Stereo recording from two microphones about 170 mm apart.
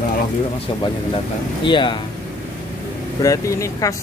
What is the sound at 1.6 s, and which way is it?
Speech, 30° left (ahead or behind).